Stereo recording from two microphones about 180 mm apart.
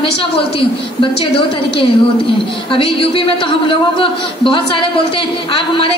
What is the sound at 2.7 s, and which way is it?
A woman's voice, 30° left (ahead or behind).